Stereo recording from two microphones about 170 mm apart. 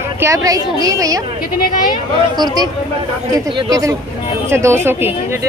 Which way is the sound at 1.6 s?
55° left (ahead or behind).